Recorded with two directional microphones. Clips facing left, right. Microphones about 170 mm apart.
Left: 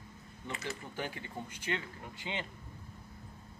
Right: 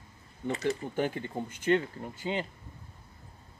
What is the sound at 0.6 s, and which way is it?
Speech, 50° right (ahead or behind).